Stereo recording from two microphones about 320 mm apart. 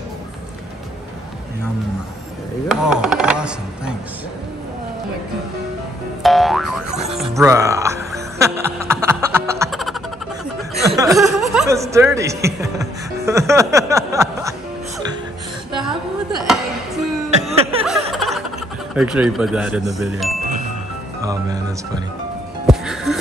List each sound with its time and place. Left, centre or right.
2.7 s speech: centre
6.2 s speech: centre
9.2 s music: centre
10.7 s chuckle: centre
11.1 s speech: centre
17.3 s chuckle: centre
18.1 s snicker: centre
18.9 s speech: centre
22.7 s music: centre